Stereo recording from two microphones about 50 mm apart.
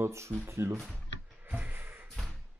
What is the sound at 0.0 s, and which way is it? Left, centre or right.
Speech, right.